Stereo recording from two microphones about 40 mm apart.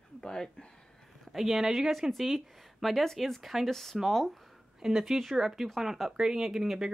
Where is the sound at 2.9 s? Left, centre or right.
Centre.